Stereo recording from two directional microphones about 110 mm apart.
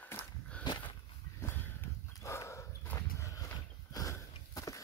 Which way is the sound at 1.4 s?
20° left (ahead or behind).